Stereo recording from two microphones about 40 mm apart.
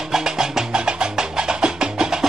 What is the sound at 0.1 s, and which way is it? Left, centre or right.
Music, centre.